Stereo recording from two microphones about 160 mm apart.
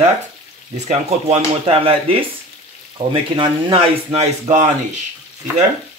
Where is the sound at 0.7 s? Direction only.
45° right (ahead or behind).